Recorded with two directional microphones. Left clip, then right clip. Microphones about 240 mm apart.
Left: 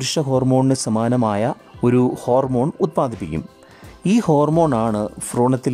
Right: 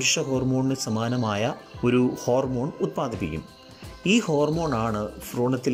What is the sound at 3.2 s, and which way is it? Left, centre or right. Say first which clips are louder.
Speech: left 3 dB; left.